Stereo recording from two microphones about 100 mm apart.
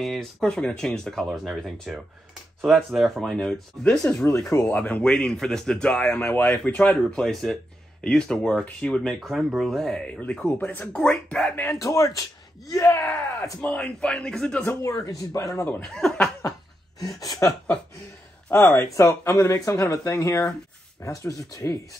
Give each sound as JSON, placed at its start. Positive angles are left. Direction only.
{"t": 0.0, "sound": "speech", "side_deg": 0}
{"t": 4.2, "sound": "speech", "side_deg": 30}
{"t": 4.6, "sound": "speech", "side_deg": 15}
{"t": 11.8, "sound": "speech", "side_deg": 35}
{"t": 13.0, "sound": "speech", "side_deg": 20}
{"t": 14.7, "sound": "speech", "side_deg": 30}
{"t": 15.8, "sound": "speech", "side_deg": 5}
{"t": 17.2, "sound": "speech", "side_deg": 35}
{"t": 18.5, "sound": "speech", "side_deg": 10}
{"t": 18.9, "sound": "speech", "side_deg": 30}